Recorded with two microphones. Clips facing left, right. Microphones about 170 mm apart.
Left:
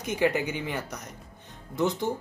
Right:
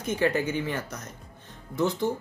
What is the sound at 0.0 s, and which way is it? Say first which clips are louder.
Speech: even; 15° left (ahead or behind).